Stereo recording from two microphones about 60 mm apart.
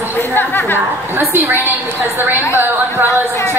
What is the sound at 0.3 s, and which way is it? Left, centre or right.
Speech, left.